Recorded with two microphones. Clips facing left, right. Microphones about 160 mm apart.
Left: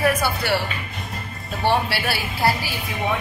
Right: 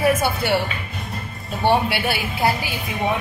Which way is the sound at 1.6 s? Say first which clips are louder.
Right 2 dB; 20° right (ahead or behind).